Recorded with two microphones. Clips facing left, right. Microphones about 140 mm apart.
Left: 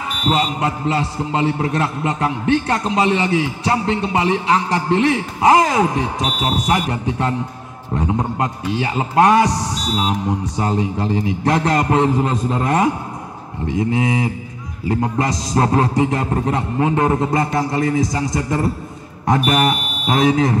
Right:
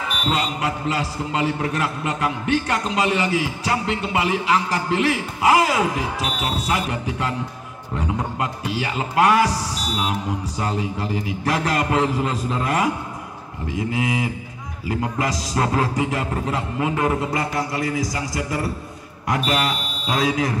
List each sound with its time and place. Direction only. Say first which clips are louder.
0.3 s a man's voice: left 5 dB; 25° left (ahead or behind)